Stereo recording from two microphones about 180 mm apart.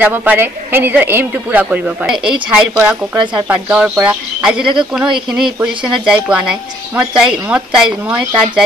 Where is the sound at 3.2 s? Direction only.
25° right (ahead or behind).